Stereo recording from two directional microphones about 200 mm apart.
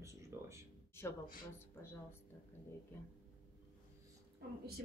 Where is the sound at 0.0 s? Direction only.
15° right (ahead or behind).